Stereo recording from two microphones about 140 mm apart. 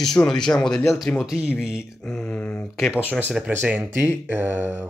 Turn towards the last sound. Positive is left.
turn(degrees=-15)  # may be behind; listen again after turning